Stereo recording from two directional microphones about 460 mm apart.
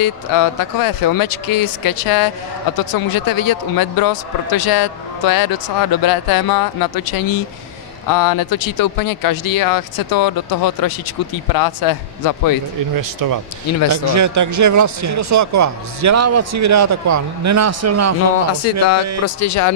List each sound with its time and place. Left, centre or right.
0.0 s speech: left
12.9 s speech: right
18.5 s speech: left